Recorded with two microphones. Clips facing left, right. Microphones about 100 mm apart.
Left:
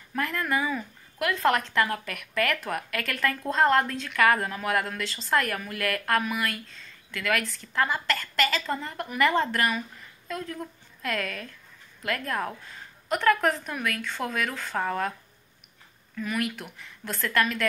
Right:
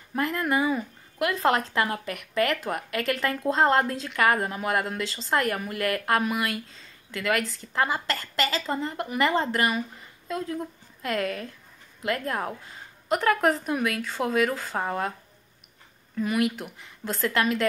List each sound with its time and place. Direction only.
0.1 s a woman's voice: 20° right (ahead or behind)
4.2 s a woman's voice: 15° right (ahead or behind); by 14.8 s 30° right (ahead or behind)
14.8 s a woman's voice: 20° right (ahead or behind)
16.2 s a woman's voice: 25° right (ahead or behind)